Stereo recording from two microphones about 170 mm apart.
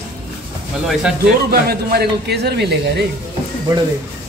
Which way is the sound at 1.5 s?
70° right (ahead or behind).